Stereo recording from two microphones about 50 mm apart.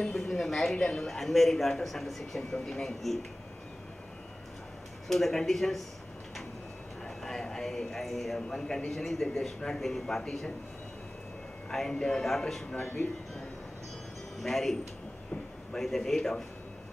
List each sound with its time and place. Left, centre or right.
0.0 s a man's voice: centre
5.0 s speech: centre
7.2 s a man's voice: centre
11.7 s a man's voice: centre
14.4 s a man's voice: centre